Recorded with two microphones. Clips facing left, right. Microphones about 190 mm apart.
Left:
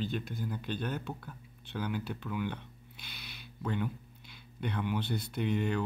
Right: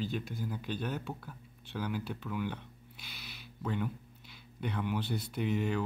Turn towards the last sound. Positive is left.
turn(degrees=-5)  # may be behind; listen again after turning